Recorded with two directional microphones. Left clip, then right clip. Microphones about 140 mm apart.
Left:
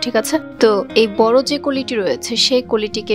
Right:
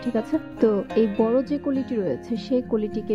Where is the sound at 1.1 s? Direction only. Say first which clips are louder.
Left 11 dB; 40° left (ahead or behind).